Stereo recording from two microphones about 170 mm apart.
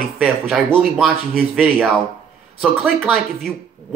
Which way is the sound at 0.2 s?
Centre (ahead or behind).